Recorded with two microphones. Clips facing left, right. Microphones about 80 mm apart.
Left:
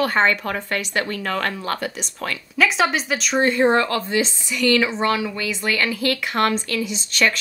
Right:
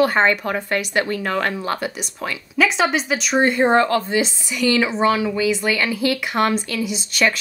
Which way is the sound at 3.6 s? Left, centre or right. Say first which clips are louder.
Right 2 dB; right.